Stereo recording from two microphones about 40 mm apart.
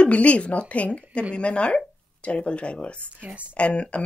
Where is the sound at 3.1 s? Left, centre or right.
Right.